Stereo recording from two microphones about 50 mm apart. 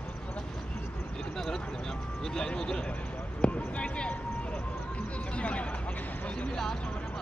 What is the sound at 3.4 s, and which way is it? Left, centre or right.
Basketball bounce, left.